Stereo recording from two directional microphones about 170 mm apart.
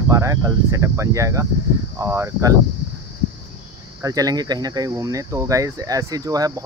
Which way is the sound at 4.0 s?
20° right (ahead or behind).